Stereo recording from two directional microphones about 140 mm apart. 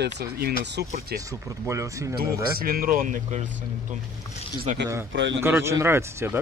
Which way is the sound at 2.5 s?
90° right.